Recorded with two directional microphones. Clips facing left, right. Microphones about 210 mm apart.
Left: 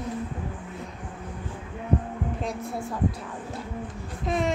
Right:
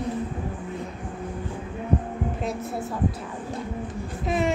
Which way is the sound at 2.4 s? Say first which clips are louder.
Right 2 dB; 5° right (ahead or behind).